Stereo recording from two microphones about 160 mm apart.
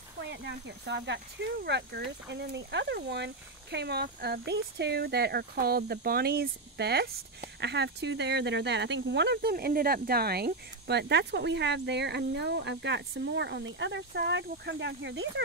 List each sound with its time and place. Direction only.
0.3 s speech: 90° right